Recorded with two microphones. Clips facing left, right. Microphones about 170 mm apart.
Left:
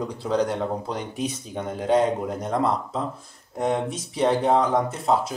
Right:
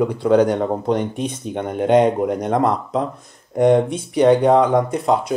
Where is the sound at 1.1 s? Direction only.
5° left (ahead or behind).